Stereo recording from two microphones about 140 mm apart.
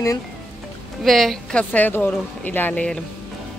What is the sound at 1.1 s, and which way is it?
Speech, centre (ahead or behind).